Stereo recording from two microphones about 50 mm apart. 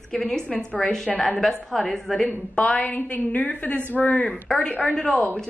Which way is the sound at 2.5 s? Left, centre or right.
Left.